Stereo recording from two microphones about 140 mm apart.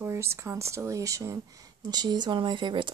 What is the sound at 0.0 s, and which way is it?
Speech, 20° right (ahead or behind).